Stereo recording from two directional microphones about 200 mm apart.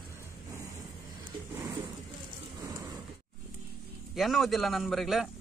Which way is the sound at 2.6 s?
15° right (ahead or behind).